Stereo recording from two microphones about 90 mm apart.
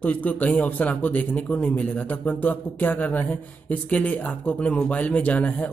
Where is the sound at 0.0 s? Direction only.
20° left (ahead or behind).